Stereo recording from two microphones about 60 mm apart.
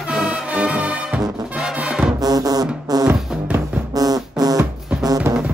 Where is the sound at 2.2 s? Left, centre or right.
Right.